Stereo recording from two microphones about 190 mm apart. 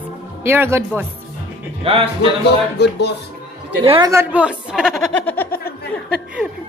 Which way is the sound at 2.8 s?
60° left (ahead or behind).